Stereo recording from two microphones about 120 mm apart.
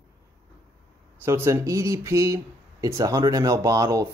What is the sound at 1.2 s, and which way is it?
Speech, 20° right (ahead or behind).